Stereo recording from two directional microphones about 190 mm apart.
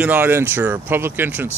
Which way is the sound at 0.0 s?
10° right (ahead or behind).